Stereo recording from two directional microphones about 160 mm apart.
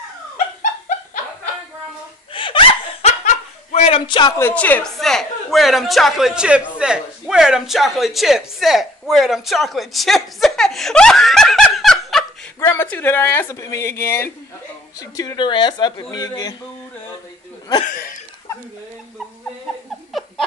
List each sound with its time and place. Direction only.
2.3 s snicker: 35° left (ahead or behind)
4.4 s a man's voice: 10° left (ahead or behind)
12.5 s speech: 15° left (ahead or behind)
17.8 s a sound: 60° left (ahead or behind)
20.1 s laughter: centre (ahead or behind)